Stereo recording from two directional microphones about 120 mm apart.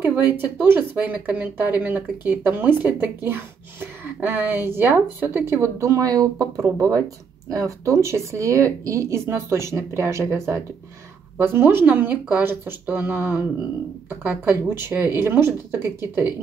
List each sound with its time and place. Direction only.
0.2 s speech: 15° right (ahead or behind)